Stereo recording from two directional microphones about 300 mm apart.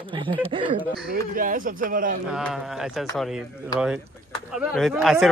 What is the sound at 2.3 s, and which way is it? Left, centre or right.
Speech, centre.